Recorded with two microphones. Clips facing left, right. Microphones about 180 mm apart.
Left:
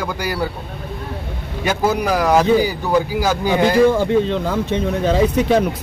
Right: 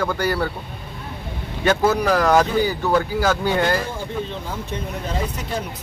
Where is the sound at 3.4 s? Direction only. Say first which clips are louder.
Left 7 dB; 90° left.